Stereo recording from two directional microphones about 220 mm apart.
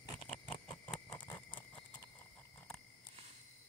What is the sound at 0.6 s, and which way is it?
Patter, 5° left (ahead or behind).